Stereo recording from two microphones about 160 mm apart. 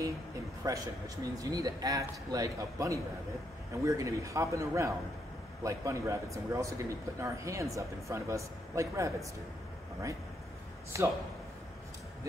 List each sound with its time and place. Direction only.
0.7 s speech: 20° right (ahead or behind)
10.9 s a man's voice: 20° right (ahead or behind)